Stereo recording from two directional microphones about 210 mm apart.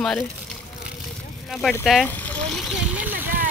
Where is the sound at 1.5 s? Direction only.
Centre (ahead or behind).